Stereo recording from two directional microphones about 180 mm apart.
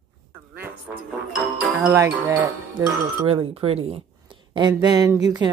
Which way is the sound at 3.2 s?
30° right (ahead or behind).